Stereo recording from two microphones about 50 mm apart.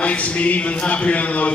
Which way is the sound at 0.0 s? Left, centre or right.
Left.